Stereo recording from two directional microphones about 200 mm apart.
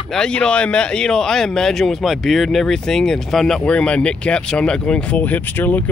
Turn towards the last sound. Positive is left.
turn(degrees=10)  # may be behind; listen again after turning